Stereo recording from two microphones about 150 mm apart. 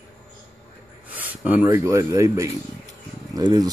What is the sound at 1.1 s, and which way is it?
Speech, 10° right (ahead or behind).